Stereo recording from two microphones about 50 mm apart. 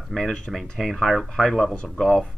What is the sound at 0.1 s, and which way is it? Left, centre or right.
Speech, centre.